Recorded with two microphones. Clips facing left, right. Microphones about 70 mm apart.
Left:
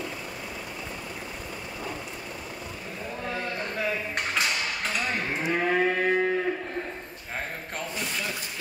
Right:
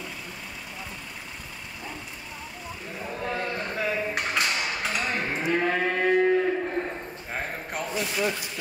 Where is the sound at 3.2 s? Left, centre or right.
Centre.